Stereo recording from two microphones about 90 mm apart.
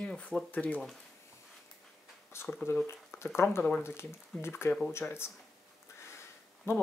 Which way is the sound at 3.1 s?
30° left (ahead or behind).